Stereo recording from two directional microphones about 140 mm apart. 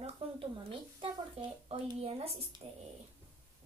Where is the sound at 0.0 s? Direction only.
40° right (ahead or behind).